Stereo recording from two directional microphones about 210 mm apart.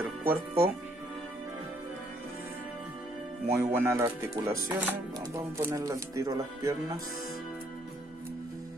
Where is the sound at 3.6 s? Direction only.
15° right (ahead or behind).